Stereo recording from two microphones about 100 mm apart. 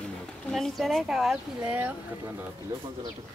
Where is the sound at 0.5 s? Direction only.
Centre (ahead or behind); by 2.0 s 15° right (ahead or behind).